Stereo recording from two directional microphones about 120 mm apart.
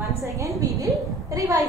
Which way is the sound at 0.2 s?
25° right (ahead or behind).